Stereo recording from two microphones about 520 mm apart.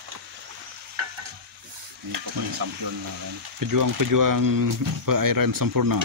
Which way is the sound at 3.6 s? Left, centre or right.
Right.